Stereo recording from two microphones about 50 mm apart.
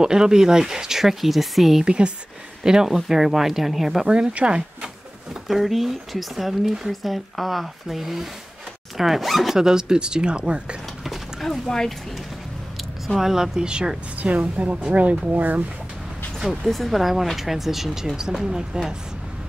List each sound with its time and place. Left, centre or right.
0.0 s speech: centre
1.9 s speech: right; by 4.1 s centre
4.1 s speech: right
5.5 s speech: centre
9.6 s speech: centre
11.1 s a sound: centre
13.0 s speech: centre
14.3 s speech: right
16.3 s speech: centre